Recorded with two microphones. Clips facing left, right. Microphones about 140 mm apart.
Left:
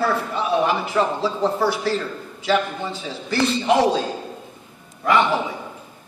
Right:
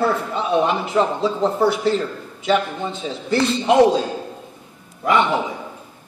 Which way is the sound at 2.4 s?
20° right (ahead or behind).